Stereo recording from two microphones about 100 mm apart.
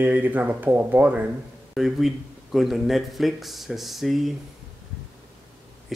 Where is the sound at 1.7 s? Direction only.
Centre (ahead or behind).